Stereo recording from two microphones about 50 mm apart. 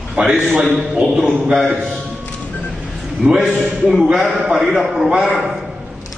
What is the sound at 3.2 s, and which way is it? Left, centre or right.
A man's voice, centre.